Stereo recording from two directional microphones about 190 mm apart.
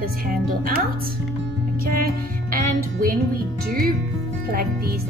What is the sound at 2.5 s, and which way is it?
Music, 50° right (ahead or behind).